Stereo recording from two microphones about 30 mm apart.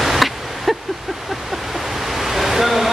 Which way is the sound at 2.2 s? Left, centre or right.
Centre.